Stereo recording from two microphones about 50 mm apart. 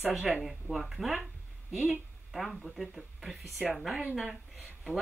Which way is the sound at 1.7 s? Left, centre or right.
Centre.